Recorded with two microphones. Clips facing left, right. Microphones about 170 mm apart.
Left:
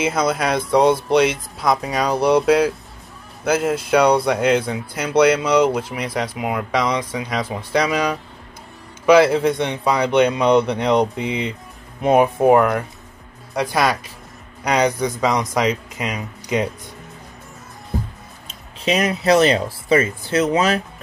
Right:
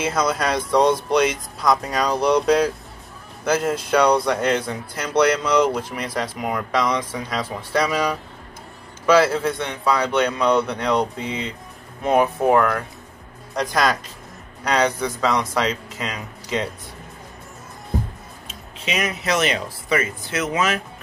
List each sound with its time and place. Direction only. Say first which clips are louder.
0.0 s speech: left 2 dB; 10° left (ahead or behind)
18.9 s speech: left 7 dB; 35° left (ahead or behind)